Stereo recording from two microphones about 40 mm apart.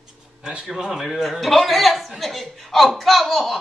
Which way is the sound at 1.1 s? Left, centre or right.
Centre.